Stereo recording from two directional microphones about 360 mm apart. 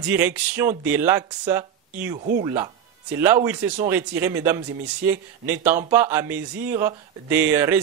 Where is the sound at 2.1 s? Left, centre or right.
Right.